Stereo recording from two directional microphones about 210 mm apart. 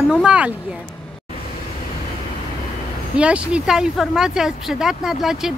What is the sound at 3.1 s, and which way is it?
Speech, 5° right (ahead or behind).